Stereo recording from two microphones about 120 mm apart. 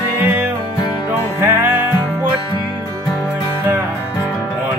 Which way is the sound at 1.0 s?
15° right (ahead or behind).